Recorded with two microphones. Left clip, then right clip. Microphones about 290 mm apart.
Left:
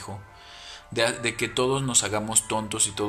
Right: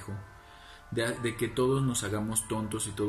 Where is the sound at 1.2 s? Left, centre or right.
Left.